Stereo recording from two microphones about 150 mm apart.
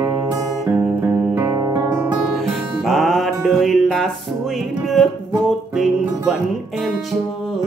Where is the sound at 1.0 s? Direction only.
15° right (ahead or behind).